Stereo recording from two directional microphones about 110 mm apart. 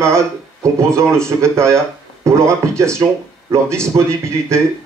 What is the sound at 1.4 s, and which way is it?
Speech, 25° right (ahead or behind).